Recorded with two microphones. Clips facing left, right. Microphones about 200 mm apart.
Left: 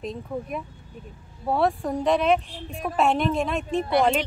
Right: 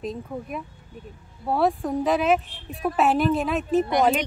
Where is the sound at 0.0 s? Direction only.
Centre (ahead or behind).